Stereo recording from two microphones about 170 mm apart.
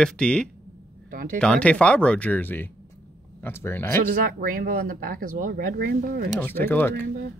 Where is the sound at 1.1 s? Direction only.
55° right (ahead or behind).